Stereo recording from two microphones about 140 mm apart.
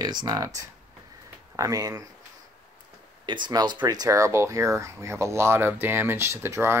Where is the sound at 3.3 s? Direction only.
35° right (ahead or behind).